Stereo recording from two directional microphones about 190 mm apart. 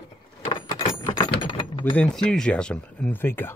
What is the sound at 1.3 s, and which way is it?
Mechanisms, 25° left (ahead or behind).